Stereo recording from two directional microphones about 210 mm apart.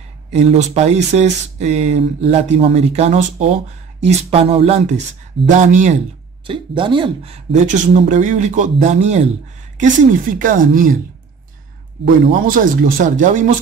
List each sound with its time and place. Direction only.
0.3 s speech: 30° right (ahead or behind)
6.4 s speech: 25° right (ahead or behind); by 10.9 s 40° right (ahead or behind)
12.0 s speech: 40° right (ahead or behind)